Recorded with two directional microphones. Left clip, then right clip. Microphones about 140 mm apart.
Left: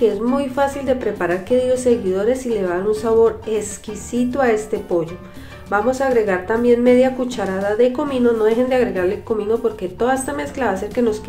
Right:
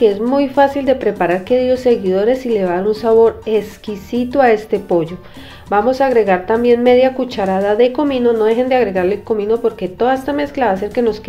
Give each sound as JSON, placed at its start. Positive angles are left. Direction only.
{"t": 0.0, "sound": "a woman's voice", "side_deg": -25}